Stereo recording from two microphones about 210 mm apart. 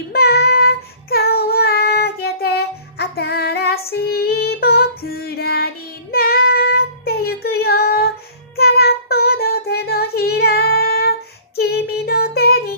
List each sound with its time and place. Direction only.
0.1 s child singing: 50° left (ahead or behind)